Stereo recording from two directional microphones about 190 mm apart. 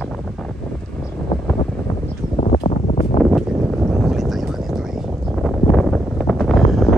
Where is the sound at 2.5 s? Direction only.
25° left (ahead or behind).